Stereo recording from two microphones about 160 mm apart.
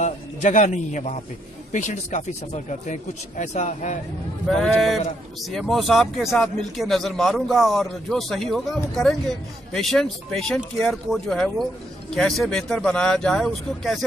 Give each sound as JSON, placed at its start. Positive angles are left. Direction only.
{"t": 0.0, "sound": "a man's voice", "side_deg": 45}
{"t": 4.5, "sound": "a man's voice", "side_deg": 0}